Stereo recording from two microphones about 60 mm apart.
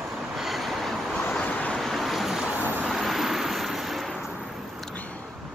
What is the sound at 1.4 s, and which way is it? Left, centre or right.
Vehicle, left.